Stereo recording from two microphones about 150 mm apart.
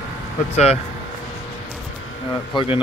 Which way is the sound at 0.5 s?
45° left (ahead or behind).